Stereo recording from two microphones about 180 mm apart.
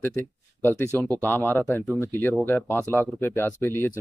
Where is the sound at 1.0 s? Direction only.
15° right (ahead or behind).